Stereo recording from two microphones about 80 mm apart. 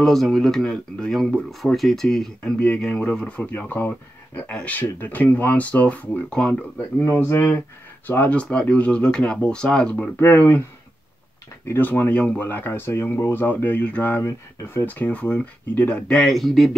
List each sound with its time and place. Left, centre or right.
0.0 s speech: centre; by 3.9 s left
4.5 s speech: centre
4.7 s speech: left
7.0 s speech: left
8.1 s speech: left
10.1 s speech: left
11.6 s speech: left
14.2 s speech: left
14.9 s speech: left
16.1 s speech: centre